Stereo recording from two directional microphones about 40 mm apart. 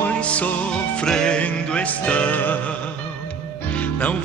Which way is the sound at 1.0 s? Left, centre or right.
Centre.